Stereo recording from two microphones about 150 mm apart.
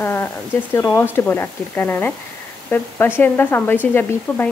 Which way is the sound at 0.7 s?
15° left (ahead or behind).